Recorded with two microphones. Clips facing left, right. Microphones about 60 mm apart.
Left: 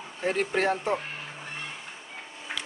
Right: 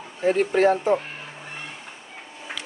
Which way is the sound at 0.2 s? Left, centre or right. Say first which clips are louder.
Right 7 dB; centre.